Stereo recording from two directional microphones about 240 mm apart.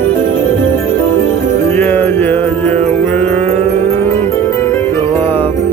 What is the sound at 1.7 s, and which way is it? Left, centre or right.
Music, centre.